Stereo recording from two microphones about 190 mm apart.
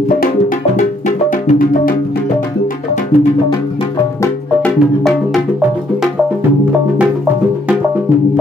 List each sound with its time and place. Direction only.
0.7 s music: 45° left (ahead or behind)
4.2 s music: 5° left (ahead or behind)